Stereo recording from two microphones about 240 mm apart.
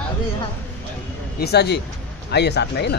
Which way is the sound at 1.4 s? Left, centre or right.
Left.